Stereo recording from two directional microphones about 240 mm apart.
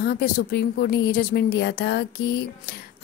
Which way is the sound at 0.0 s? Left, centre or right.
Left.